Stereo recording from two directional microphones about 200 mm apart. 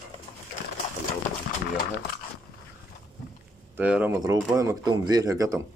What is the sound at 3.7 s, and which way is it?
Speech, 5° right (ahead or behind).